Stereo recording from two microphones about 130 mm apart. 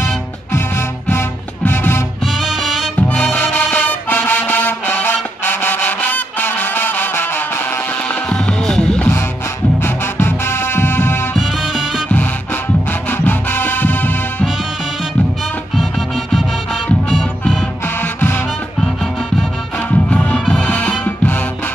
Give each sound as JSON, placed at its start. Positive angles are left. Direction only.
{"t": 1.0, "sound": "music", "side_deg": 15}
{"t": 2.4, "sound": "music", "side_deg": -5}
{"t": 3.0, "sound": "music", "side_deg": 15}
{"t": 9.8, "sound": "music", "side_deg": 20}
{"t": 13.2, "sound": "music", "side_deg": 15}
{"t": 15.7, "sound": "music", "side_deg": 0}
{"t": 20.1, "sound": "music", "side_deg": 10}